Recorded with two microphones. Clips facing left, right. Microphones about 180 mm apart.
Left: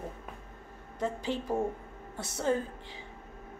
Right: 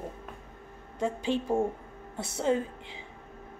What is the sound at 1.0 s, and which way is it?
A woman's voice, 15° right (ahead or behind).